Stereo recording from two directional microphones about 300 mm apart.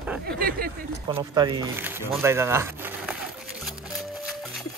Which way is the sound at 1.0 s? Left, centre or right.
Centre.